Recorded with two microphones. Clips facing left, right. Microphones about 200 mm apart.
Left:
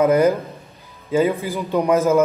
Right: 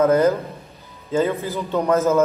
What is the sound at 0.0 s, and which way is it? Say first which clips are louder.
A man's voice: left 1 dB; 15° left (ahead or behind).